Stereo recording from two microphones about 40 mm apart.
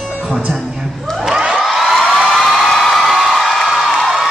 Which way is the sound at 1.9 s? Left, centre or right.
Centre.